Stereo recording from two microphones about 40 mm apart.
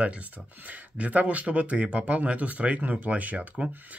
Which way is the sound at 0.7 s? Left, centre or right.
Right.